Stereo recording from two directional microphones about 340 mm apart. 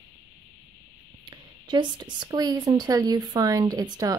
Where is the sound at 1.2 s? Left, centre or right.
Centre.